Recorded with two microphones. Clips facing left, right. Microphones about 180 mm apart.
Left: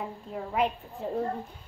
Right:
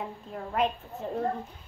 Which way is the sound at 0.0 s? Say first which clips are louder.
Left 1 dB; 5° left (ahead or behind).